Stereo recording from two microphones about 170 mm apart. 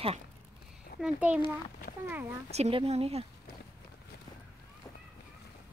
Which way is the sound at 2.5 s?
35° right (ahead or behind).